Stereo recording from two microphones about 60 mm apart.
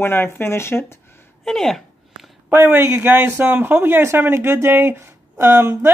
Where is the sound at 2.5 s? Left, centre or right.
Right.